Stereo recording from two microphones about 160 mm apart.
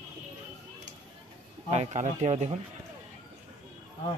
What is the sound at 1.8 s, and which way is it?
Speech, 45° right (ahead or behind).